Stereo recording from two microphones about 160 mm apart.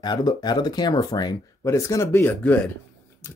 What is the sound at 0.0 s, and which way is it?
Speech, 25° left (ahead or behind).